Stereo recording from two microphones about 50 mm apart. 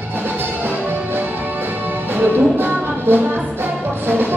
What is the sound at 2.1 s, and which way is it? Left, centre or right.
Music, right.